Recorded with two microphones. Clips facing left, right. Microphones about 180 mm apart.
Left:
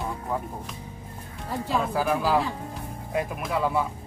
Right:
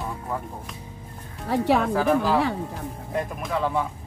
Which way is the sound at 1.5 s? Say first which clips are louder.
Right 6 dB; 70° right (ahead or behind).